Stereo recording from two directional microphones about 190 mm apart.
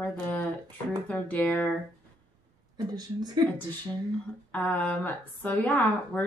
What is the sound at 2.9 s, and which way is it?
Speech, 20° right (ahead or behind).